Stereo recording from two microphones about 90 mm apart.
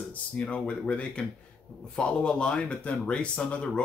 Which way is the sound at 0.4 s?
10° left (ahead or behind).